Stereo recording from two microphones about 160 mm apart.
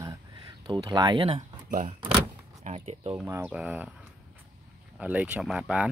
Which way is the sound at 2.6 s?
40° right (ahead or behind).